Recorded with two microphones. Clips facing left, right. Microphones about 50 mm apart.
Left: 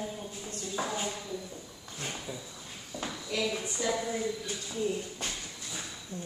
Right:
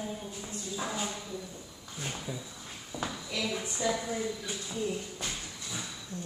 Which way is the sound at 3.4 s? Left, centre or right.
Centre.